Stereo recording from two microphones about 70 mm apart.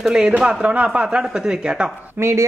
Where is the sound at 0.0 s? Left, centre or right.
Centre.